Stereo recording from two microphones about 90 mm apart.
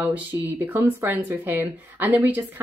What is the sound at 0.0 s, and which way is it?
Speech, 15° right (ahead or behind).